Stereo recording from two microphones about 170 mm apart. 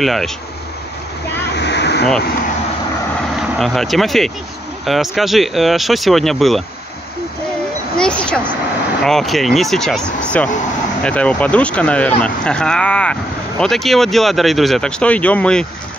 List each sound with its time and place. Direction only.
0.0 s speech: centre (ahead or behind)
1.5 s vehicle: 90° left
3.3 s speech: centre (ahead or behind)
8.0 s speech: 5° left (ahead or behind)